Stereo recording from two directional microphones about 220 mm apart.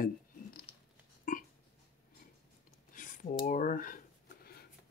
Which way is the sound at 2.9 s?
35° left (ahead or behind).